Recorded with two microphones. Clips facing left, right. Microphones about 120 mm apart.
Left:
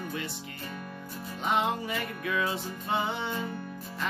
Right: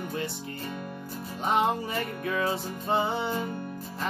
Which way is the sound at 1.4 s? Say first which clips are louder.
Right 3 dB; 35° right (ahead or behind).